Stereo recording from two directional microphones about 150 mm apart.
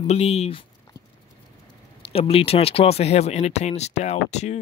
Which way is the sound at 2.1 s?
40° left (ahead or behind).